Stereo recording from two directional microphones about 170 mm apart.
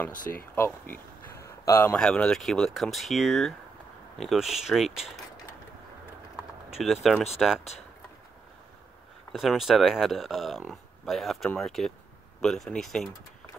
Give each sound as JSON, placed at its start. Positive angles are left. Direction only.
{"t": 0.1, "sound": "speech", "side_deg": 55}
{"t": 0.6, "sound": "a sound", "side_deg": 10}
{"t": 2.0, "sound": "speech", "side_deg": 5}
{"t": 6.8, "sound": "speech", "side_deg": 0}
{"t": 9.3, "sound": "speech", "side_deg": 0}